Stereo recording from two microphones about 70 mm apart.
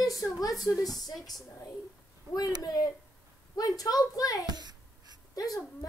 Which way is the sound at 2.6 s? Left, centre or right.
Left.